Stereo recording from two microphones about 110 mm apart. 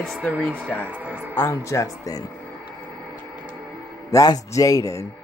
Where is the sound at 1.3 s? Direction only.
25° left (ahead or behind).